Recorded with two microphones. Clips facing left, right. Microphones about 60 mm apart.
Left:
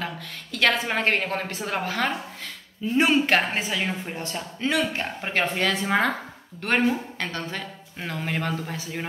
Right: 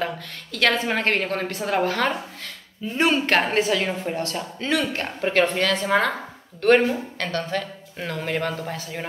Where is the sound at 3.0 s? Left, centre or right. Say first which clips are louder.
Even; centre.